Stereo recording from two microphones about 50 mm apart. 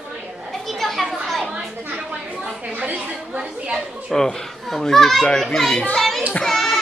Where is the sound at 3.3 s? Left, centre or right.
Centre.